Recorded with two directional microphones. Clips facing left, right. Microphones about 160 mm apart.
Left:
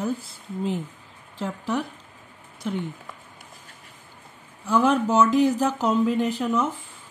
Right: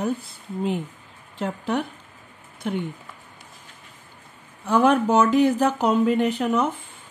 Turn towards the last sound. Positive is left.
turn(degrees=-65)  # may be behind; listen again after turning